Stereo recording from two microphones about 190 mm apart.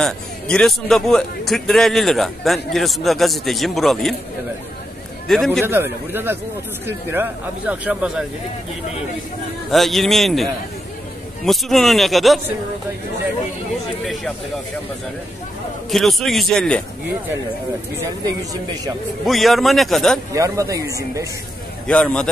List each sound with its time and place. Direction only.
0.0 s a man's voice: 5° left (ahead or behind)
5.3 s a man's voice: centre (ahead or behind)
5.7 s speech: 10° right (ahead or behind)
9.7 s a man's voice: centre (ahead or behind)
15.9 s a man's voice: centre (ahead or behind)
19.2 s a man's voice: centre (ahead or behind)
20.3 s speech: 15° right (ahead or behind)
21.8 s a man's voice: 5° left (ahead or behind)